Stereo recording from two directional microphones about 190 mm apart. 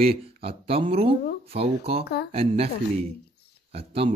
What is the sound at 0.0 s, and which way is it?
Speech, 30° right (ahead or behind).